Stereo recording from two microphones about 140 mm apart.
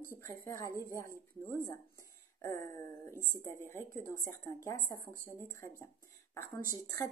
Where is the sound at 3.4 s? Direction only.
20° left (ahead or behind).